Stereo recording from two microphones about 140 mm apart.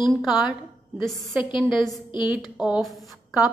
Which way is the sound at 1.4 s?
35° left (ahead or behind).